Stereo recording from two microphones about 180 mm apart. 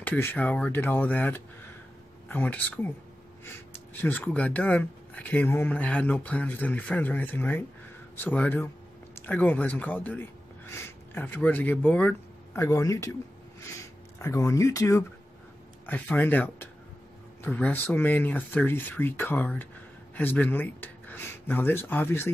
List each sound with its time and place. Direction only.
0.0 s speech: 10° left (ahead or behind)
4.0 s speech: 10° left (ahead or behind)
14.1 s speech: 15° left (ahead or behind)